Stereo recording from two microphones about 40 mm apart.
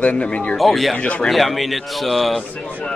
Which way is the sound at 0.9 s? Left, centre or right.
Left.